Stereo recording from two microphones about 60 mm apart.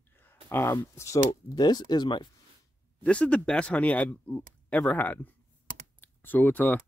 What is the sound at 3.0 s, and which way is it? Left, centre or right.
Speech, centre.